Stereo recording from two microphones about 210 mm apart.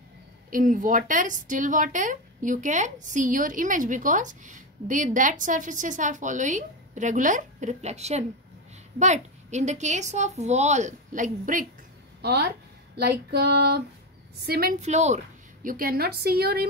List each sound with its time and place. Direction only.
0.5 s speech: 40° right (ahead or behind)
12.2 s a woman's voice: 50° right (ahead or behind); by 15.1 s 35° right (ahead or behind)
15.6 s a woman's voice: 45° right (ahead or behind)